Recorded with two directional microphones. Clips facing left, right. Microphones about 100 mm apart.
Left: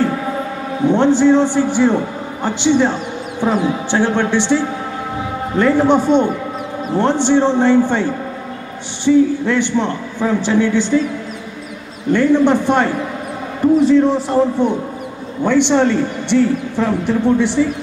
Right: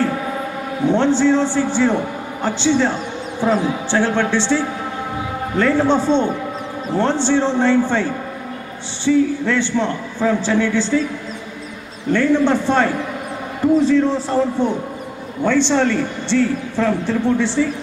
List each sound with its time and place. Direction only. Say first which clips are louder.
0.8 s speech: left 3 dB; 15° left (ahead or behind)
12.1 s speech: left 3 dB; 15° left (ahead or behind)